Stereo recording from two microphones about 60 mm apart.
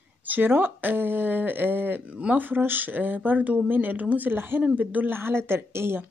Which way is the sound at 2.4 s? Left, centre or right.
Right.